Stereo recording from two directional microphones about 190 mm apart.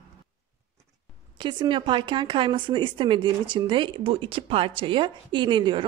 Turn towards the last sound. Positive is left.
turn(degrees=-25)  # may be behind; listen again after turning